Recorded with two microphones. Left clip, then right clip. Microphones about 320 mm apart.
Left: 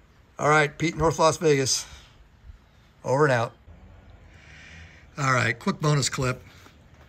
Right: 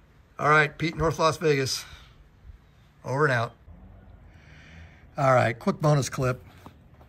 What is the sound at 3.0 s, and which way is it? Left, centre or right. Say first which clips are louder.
Speech: left 3 dB; centre.